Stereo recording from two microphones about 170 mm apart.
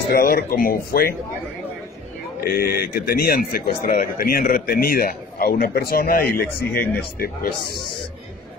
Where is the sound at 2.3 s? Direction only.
65° left (ahead or behind).